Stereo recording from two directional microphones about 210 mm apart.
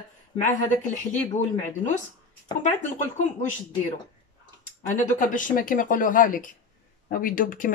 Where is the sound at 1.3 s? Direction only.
35° left (ahead or behind).